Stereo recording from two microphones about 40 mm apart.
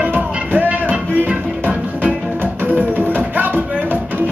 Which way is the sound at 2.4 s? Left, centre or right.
Right.